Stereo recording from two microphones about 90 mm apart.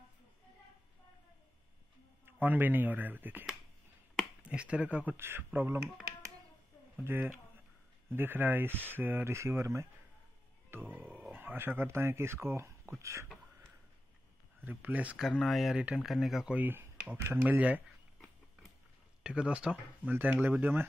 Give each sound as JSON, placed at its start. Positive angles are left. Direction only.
{"t": 2.4, "sound": "speech", "side_deg": -20}
{"t": 4.5, "sound": "speech", "side_deg": -10}
{"t": 5.1, "sound": "speech", "side_deg": -25}
{"t": 7.1, "sound": "speech", "side_deg": -25}
{"t": 14.6, "sound": "speech", "side_deg": -20}
{"t": 15.1, "sound": "speech", "side_deg": 0}
{"t": 16.5, "sound": "speech", "side_deg": -25}
{"t": 19.2, "sound": "speech", "side_deg": -10}